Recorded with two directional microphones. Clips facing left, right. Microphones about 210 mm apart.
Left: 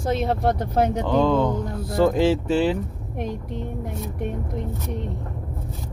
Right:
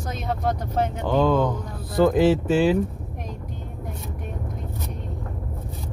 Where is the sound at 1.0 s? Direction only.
5° right (ahead or behind).